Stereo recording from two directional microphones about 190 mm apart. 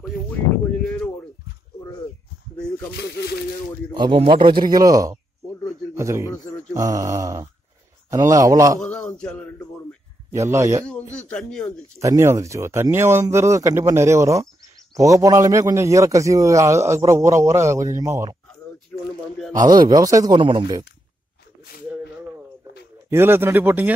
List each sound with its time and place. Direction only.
0.8 s a sound: 5° left (ahead or behind)
2.5 s snake: 5° left (ahead or behind)
2.9 s speech: 60° left (ahead or behind)
3.9 s a man's voice: 25° right (ahead or behind)
8.8 s speech: 5° left (ahead or behind)
10.3 s speech: 15° right (ahead or behind)
11.1 s speech: 5° left (ahead or behind)
12.0 s speech: 15° right (ahead or behind)
19.9 s a man's voice: 15° right (ahead or behind)
23.0 s speech: 10° right (ahead or behind)